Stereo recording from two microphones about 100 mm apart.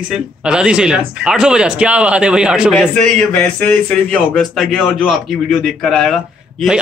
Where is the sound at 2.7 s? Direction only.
10° left (ahead or behind).